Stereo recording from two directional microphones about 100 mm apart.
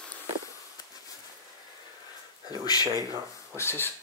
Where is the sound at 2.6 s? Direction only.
40° left (ahead or behind).